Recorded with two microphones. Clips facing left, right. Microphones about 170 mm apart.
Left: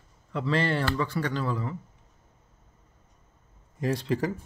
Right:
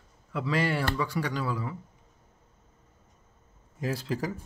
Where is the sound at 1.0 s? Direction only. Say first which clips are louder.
Left 1 dB; 10° right (ahead or behind).